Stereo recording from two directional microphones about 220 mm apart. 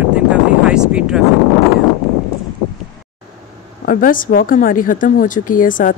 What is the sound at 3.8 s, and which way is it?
Speech, 40° left (ahead or behind).